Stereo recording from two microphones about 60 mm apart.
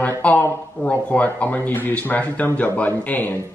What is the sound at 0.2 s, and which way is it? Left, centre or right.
Speech, centre.